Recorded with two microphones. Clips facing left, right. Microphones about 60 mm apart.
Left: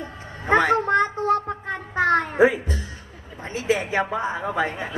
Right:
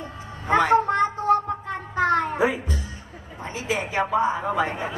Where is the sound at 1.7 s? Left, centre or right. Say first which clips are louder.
Left 2 dB; left.